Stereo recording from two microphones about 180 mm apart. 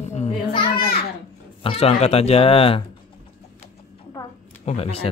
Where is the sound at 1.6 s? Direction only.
35° left (ahead or behind).